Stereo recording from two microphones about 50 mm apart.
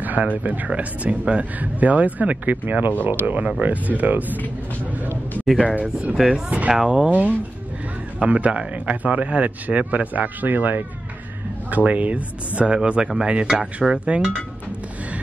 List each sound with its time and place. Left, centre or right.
0.0 s a sound: right
0.4 s speech: right
5.8 s speech: right
6.7 s speech: centre
7.1 s speech: right